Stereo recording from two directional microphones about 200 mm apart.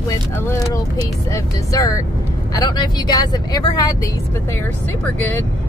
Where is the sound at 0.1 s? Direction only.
10° left (ahead or behind).